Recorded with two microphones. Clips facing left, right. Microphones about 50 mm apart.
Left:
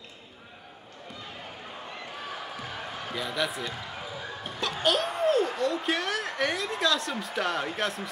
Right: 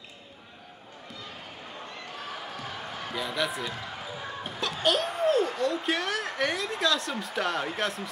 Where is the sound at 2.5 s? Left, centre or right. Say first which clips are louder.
Even; centre.